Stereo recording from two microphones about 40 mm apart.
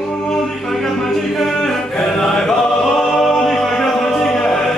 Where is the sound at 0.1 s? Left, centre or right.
Centre.